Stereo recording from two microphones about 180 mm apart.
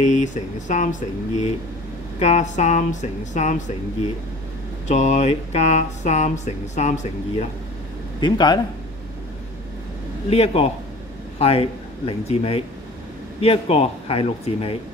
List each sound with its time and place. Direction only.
0.0 s speech: 45° left (ahead or behind)
2.1 s speech: 40° left (ahead or behind)
4.8 s speech: 40° left (ahead or behind)
8.2 s speech: 25° left (ahead or behind)
10.3 s speech: 35° left (ahead or behind)